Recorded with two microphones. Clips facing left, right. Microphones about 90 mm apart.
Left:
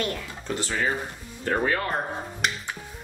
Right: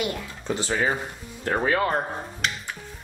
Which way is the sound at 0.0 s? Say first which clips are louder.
Right 1 dB; 15° right (ahead or behind).